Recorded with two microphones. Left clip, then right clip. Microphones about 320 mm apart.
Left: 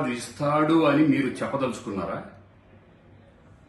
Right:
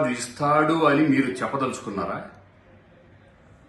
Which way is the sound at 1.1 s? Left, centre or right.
Left.